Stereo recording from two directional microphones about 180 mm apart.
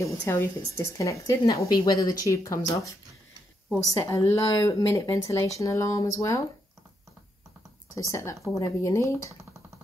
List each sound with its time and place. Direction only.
0.0 s speech: 15° left (ahead or behind)
4.1 s speech: 15° left (ahead or behind)
7.9 s speech: 15° left (ahead or behind)